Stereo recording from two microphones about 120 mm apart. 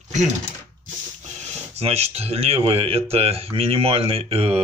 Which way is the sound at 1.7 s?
60° right (ahead or behind).